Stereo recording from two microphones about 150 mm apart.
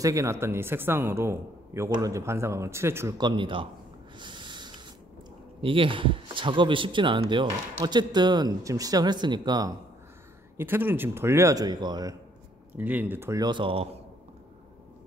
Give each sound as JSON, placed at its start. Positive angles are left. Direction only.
{"t": 0.0, "sound": "a man's voice", "side_deg": -20}
{"t": 3.2, "sound": "speech", "side_deg": -30}
{"t": 4.2, "sound": "snort", "side_deg": -30}
{"t": 5.6, "sound": "speech", "side_deg": -35}
{"t": 10.6, "sound": "a man's voice", "side_deg": -15}
{"t": 12.7, "sound": "a man's voice", "side_deg": -10}